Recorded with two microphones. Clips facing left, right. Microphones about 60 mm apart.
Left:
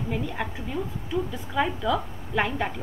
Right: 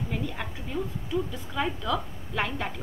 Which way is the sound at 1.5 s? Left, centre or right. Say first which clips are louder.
Left 4 dB; centre.